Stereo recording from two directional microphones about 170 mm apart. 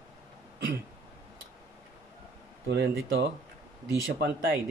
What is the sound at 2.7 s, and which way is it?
Speech, 90° right.